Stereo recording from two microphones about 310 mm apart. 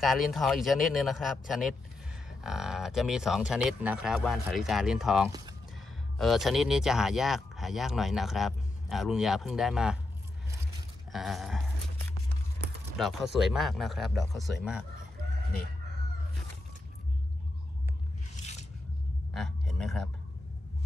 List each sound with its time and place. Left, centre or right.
0.0 s speech: centre
11.1 s speech: centre
12.9 s speech: centre
18.3 s filing: left
19.3 s a sound: centre